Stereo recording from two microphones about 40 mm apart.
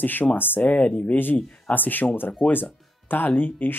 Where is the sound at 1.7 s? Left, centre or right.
Left.